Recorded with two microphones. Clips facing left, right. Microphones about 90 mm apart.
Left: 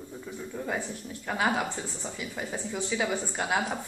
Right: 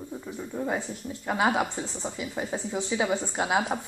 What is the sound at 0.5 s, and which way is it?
A woman's voice, 20° right (ahead or behind).